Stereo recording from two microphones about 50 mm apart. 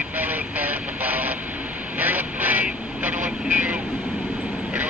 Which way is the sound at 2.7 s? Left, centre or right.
Right.